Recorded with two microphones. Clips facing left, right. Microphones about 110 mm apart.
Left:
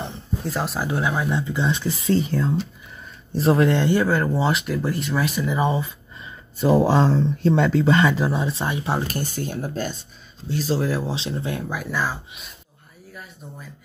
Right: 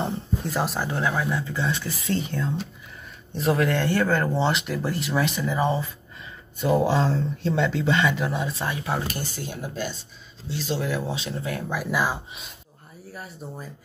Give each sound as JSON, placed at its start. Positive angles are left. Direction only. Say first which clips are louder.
{"t": 0.4, "sound": "speech", "louder": "left 2 dB", "side_deg": 0}
{"t": 0.8, "sound": "speech", "louder": "left 2 dB", "side_deg": 15}
{"t": 5.5, "sound": "speech", "louder": "left 2 dB", "side_deg": 15}
{"t": 6.6, "sound": "speech", "louder": "left 4 dB", "side_deg": 35}
{"t": 9.0, "sound": "speech", "louder": "left 4 dB", "side_deg": 45}
{"t": 11.9, "sound": "speech", "louder": "right 1 dB", "side_deg": -15}
{"t": 13.1, "sound": "speech", "louder": "right 3 dB", "side_deg": -35}